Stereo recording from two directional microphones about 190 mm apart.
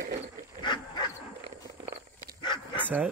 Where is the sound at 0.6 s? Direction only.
20° left (ahead or behind).